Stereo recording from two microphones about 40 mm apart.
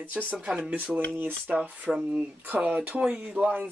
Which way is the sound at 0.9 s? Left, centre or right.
Right.